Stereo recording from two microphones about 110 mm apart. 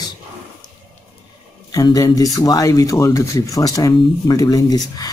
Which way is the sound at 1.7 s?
30° left (ahead or behind).